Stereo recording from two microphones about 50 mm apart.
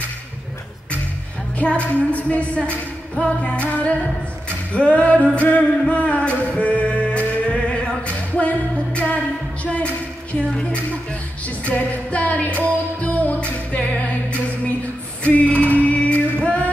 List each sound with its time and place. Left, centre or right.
1.8 s music: left
10.3 s speech: centre
11.4 s music: left
15.2 s music: left